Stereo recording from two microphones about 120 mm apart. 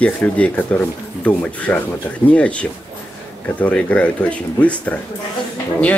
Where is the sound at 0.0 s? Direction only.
10° left (ahead or behind).